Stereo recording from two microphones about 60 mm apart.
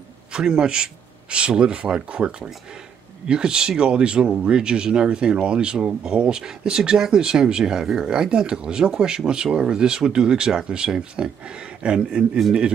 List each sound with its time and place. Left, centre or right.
0.3 s a man's voice: centre